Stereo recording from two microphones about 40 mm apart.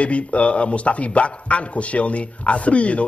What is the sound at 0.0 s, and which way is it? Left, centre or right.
Speech, left.